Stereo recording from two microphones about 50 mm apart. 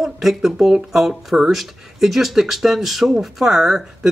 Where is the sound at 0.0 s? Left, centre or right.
Centre.